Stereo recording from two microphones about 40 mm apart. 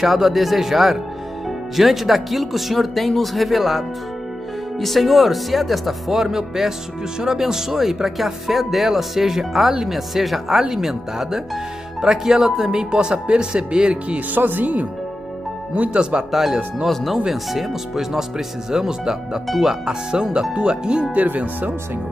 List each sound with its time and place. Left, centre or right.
0.0 s speech: centre; by 14.2 s right
14.3 s speech: right
15.9 s speech: right
16.3 s speech: centre; by 21.1 s right
21.1 s speech: right